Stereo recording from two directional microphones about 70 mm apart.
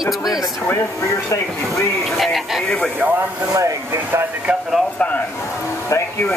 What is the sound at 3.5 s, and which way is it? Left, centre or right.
Speech, right.